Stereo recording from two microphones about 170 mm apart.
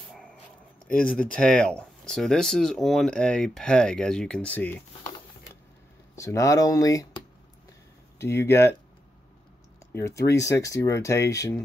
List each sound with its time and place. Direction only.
0.9 s speech: 5° left (ahead or behind)
6.1 s speech: 20° left (ahead or behind)
9.9 s speech: 15° left (ahead or behind)